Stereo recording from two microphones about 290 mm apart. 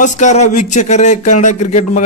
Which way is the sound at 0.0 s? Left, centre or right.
Left.